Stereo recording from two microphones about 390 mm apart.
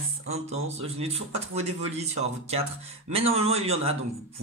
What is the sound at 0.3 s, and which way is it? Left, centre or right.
Speech, centre.